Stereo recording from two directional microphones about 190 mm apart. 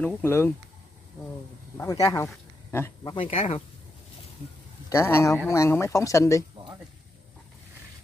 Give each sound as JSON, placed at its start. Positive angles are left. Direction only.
{"t": 0.0, "sound": "speech", "side_deg": 10}
{"t": 1.8, "sound": "speech", "side_deg": 15}
{"t": 3.3, "sound": "speech", "side_deg": 30}
{"t": 4.8, "sound": "a man's voice", "side_deg": 15}